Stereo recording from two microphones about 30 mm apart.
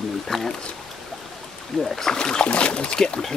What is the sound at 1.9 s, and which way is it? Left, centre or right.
Speech, centre.